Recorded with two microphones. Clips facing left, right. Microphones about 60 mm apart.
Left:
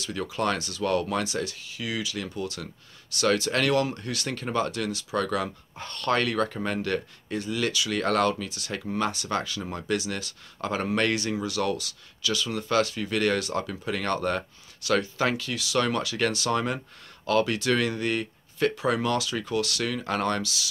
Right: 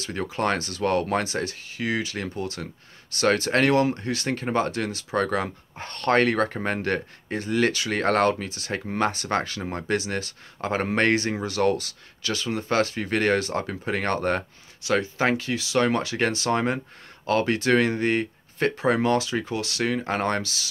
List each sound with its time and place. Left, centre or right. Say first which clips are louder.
0.0 s speech: right 2 dB; right
14.8 s speech: right 1 dB; right